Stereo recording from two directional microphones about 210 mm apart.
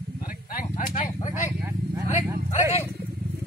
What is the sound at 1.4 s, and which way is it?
Vehicle, 10° right (ahead or behind).